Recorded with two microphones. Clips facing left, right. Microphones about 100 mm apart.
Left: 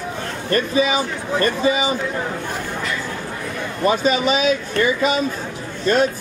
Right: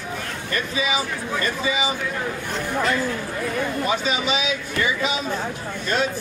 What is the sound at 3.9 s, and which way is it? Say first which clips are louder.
Speech: left 11 dB; 45° left (ahead or behind).